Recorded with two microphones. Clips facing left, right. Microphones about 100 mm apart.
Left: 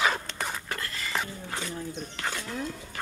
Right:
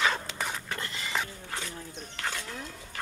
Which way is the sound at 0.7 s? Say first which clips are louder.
Left 1 dB; 20° right (ahead or behind).